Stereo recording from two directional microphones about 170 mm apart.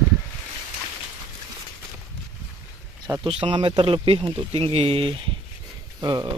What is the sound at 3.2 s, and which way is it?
Speech, 30° right (ahead or behind).